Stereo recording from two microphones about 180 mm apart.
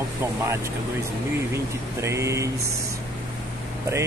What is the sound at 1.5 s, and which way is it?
Speech, 15° right (ahead or behind).